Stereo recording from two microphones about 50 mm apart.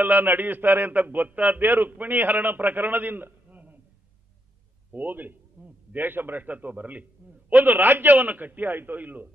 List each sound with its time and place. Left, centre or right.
0.0 s a man's voice: right
1.6 s a man's voice: right
3.4 s a sound: right
4.9 s a man's voice: right